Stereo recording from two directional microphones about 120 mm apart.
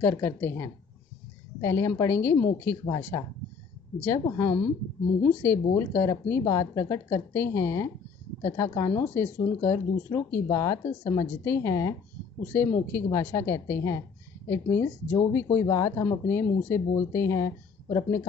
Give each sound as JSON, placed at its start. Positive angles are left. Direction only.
{"t": 0.0, "sound": "speech", "side_deg": 20}